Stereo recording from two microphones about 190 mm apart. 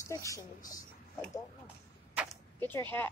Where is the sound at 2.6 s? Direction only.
10° left (ahead or behind).